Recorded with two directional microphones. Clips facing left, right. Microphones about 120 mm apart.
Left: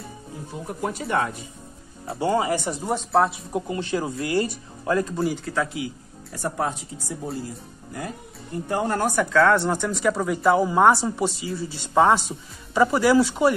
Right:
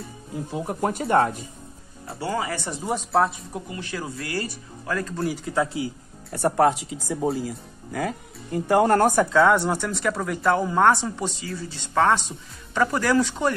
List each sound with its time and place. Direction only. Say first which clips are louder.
0.7 s speech: right 2 dB; 50° right (ahead or behind)
1.0 s speech: right 5 dB; 35° right (ahead or behind)
2.1 s speech: left 5 dB; 25° left (ahead or behind)
2.7 s speech: left 1 dB; centre (ahead or behind)
3.5 s speech: left 7 dB; 25° left (ahead or behind)
5.4 s speech: right 2 dB; 25° right (ahead or behind)
6.3 s speech: right 7 dB; 60° right (ahead or behind); by 8.1 s 90° right
8.6 s speech: right 6 dB; 65° right (ahead or behind)
9.5 s speech: even; 10° right (ahead or behind); by 13.6 s 10° left (ahead or behind)